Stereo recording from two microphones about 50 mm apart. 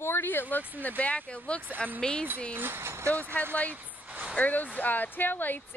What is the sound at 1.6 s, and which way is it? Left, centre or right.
Speech, right.